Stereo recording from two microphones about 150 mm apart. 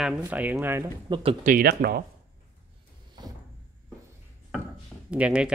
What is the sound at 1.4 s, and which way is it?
Speech, 80° right.